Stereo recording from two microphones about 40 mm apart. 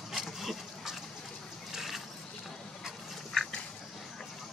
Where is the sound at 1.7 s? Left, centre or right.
Centre.